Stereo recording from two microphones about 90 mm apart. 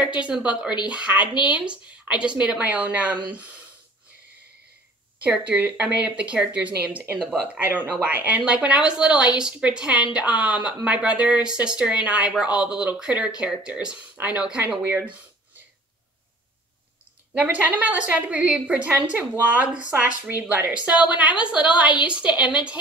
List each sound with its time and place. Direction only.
0.2 s a woman's voice: 10° right (ahead or behind)
5.2 s a woman's voice: 15° right (ahead or behind)
17.3 s a woman's voice: 15° right (ahead or behind)